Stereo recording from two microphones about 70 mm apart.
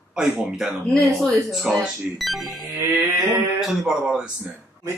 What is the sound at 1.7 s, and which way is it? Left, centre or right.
Speech, centre.